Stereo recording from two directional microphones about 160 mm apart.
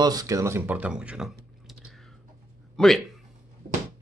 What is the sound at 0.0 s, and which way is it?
Speech, 25° right (ahead or behind).